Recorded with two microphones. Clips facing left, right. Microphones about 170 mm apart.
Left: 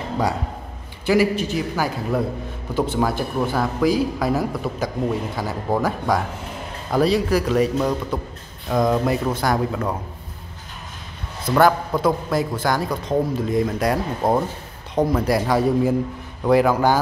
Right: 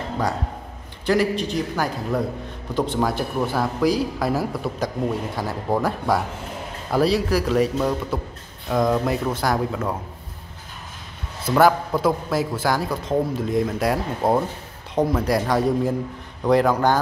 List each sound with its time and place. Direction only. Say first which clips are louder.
1.0 s speech: left 2 dB; 5° left (ahead or behind)
11.4 s speech: even; 5° right (ahead or behind)